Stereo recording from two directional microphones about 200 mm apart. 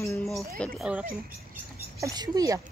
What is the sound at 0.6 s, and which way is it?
Speech, 5° right (ahead or behind).